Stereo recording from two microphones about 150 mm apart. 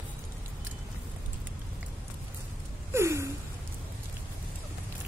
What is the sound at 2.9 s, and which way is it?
Gasp, 20° right (ahead or behind).